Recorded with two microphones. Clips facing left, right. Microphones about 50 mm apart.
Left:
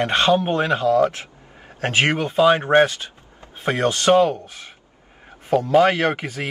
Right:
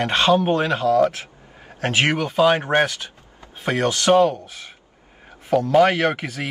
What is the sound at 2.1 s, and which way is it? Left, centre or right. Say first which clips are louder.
Speech: even; left.